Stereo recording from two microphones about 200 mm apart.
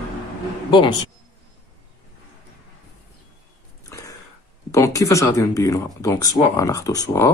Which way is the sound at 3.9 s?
15° left (ahead or behind).